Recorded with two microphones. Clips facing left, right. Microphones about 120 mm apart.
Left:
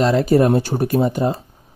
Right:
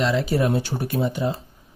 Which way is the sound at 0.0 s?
45° left (ahead or behind).